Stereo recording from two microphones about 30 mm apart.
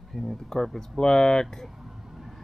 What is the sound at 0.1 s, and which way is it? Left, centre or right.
Speech, centre.